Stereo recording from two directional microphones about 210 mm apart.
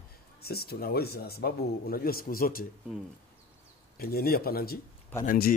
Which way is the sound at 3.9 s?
45° left (ahead or behind).